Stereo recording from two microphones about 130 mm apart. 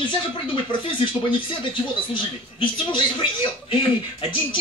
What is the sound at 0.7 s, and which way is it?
Speech, 40° left (ahead or behind).